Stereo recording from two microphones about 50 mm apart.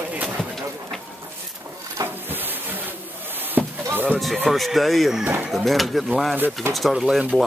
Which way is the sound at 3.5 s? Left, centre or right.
Right.